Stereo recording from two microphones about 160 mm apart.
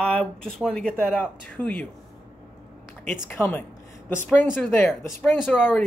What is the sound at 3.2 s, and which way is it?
Speech, 10° left (ahead or behind).